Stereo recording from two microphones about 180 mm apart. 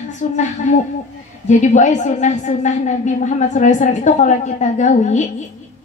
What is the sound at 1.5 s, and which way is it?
Speech, 40° left (ahead or behind).